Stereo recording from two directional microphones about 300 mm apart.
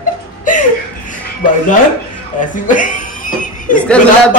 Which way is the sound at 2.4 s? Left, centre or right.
Left.